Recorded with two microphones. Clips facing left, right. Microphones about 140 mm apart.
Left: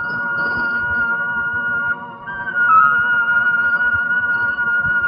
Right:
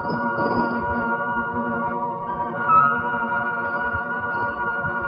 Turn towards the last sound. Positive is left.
turn(degrees=-40)  # may be behind; listen again after turning